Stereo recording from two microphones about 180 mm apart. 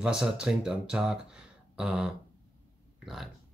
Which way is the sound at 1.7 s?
5° right (ahead or behind).